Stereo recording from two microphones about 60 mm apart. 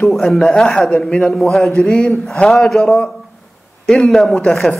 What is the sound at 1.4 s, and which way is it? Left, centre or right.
A man's voice, centre.